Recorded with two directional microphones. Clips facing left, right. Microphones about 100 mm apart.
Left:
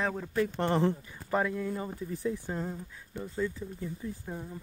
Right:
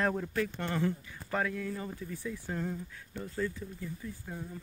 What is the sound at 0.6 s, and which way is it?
Speech, 30° left (ahead or behind).